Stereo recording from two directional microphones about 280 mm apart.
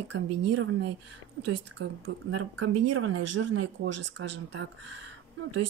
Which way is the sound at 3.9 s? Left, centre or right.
Right.